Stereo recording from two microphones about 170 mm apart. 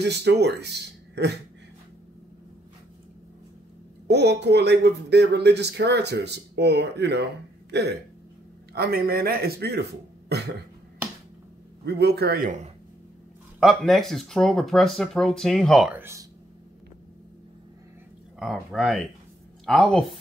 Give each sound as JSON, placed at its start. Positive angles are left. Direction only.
{"t": 0.0, "sound": "speech", "side_deg": -80}
{"t": 4.1, "sound": "speech", "side_deg": -80}
{"t": 7.7, "sound": "a man's voice", "side_deg": -75}
{"t": 11.8, "sound": "a man's voice", "side_deg": -75}
{"t": 13.6, "sound": "speech", "side_deg": 0}
{"t": 16.0, "sound": "speech", "side_deg": -15}
{"t": 18.4, "sound": "speech", "side_deg": 0}